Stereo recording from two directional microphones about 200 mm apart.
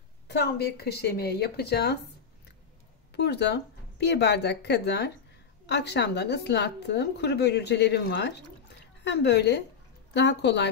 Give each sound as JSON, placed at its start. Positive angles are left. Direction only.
{"t": 0.3, "sound": "a woman's voice", "side_deg": 55}
{"t": 3.1, "sound": "speech", "side_deg": 55}